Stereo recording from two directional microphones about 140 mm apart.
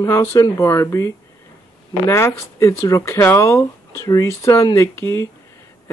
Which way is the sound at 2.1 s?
20° left (ahead or behind).